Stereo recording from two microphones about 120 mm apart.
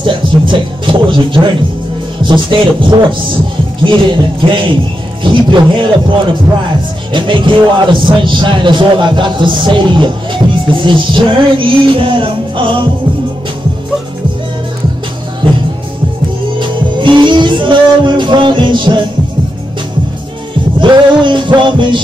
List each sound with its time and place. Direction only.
0.0 s music: 45° right (ahead or behind)
3.8 s speech: 45° right (ahead or behind)
5.2 s music: 40° right (ahead or behind)
7.1 s speech: 40° right (ahead or behind)
15.4 s music: 45° right (ahead or behind)
20.8 s music: 40° right (ahead or behind)